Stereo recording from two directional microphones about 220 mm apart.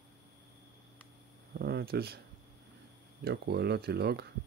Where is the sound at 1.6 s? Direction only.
45° right (ahead or behind).